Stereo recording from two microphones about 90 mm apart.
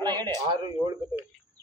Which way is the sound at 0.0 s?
50° right (ahead or behind).